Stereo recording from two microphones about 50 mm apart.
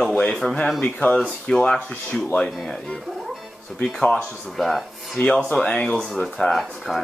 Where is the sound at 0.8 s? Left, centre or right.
Left.